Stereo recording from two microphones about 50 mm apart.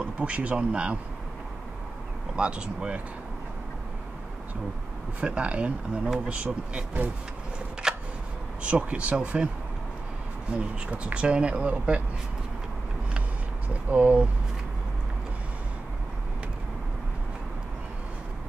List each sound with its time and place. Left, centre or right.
0.2 s speech: right
2.3 s speech: centre
5.2 s speech: right
7.8 s a sound: centre
8.6 s speech: right
10.5 s speech: right
13.8 s speech: right